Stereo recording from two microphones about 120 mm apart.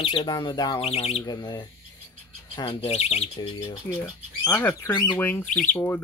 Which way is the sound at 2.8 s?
60° left (ahead or behind).